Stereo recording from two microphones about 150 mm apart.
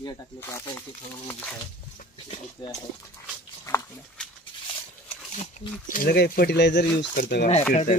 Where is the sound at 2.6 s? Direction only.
25° left (ahead or behind).